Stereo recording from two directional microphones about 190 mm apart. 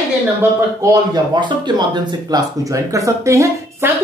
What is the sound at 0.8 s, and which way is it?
Speech, 20° right (ahead or behind).